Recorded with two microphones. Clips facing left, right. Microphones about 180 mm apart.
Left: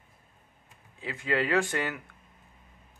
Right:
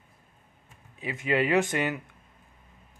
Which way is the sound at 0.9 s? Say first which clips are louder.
Right 3 dB; 20° right (ahead or behind).